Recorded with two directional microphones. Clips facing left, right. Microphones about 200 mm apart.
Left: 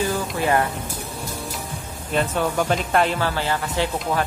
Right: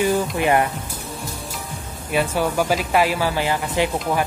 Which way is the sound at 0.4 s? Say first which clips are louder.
Even; 15° right (ahead or behind).